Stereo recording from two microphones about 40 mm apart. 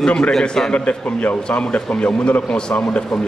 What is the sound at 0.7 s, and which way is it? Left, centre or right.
A man's voice, left.